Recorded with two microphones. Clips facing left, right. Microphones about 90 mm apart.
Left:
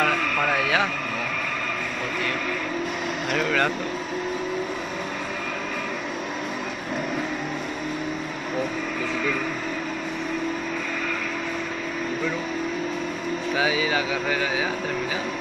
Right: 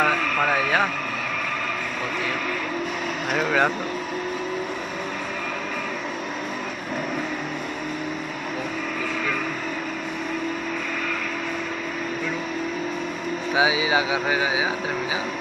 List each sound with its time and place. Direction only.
0.0 s a sound: 5° right (ahead or behind)
3.4 s speech: 15° right (ahead or behind)
13.6 s speech: 15° right (ahead or behind)